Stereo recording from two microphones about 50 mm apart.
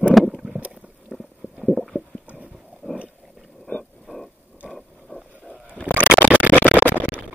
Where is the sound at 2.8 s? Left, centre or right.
Centre.